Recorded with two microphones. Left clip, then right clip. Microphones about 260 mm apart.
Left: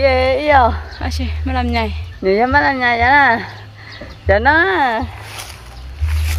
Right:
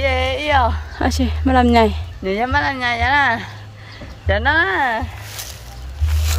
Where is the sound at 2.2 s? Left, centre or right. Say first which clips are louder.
Left 5 dB; left.